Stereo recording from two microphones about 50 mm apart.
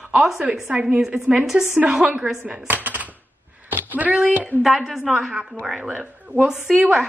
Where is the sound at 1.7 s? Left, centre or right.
Centre.